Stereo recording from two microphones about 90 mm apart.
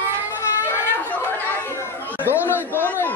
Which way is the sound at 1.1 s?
20° left (ahead or behind).